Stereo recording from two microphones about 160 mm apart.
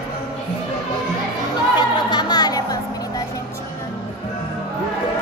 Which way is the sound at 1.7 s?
30° left (ahead or behind).